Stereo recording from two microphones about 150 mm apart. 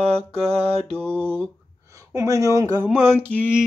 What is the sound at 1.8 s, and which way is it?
Speech, 20° right (ahead or behind).